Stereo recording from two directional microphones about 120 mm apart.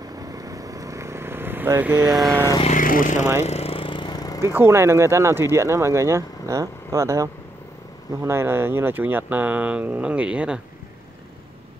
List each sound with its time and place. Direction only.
0.0 s vehicle: 30° right (ahead or behind); by 2.0 s 15° right (ahead or behind)
2.0 s vehicle: centre (ahead or behind)
2.6 s speech: 90° left
3.4 s vehicle: 60° left (ahead or behind); by 4.4 s 35° left (ahead or behind)
4.4 s speech: 20° right (ahead or behind)